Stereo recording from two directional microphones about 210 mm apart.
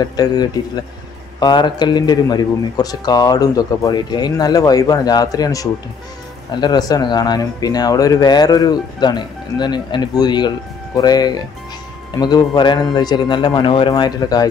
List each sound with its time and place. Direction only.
0.0 s a man's voice: 20° left (ahead or behind)